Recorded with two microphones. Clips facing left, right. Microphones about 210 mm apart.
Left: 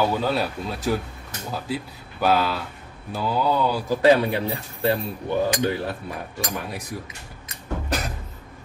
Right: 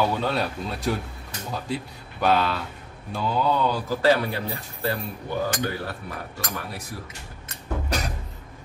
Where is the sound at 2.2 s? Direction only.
5° left (ahead or behind); by 5.0 s 20° left (ahead or behind).